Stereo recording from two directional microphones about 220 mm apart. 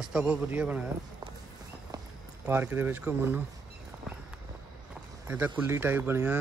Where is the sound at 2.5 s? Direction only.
10° right (ahead or behind).